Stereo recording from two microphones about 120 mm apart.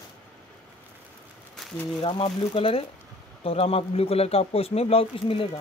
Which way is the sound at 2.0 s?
45° left (ahead or behind).